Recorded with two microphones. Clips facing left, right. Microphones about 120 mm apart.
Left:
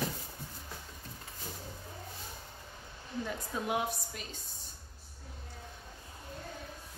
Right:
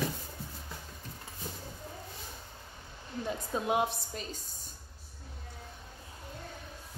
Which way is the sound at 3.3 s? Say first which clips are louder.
Right 5 dB; 25° right (ahead or behind).